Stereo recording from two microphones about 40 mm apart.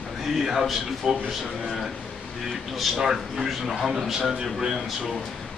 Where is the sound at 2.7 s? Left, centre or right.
Centre.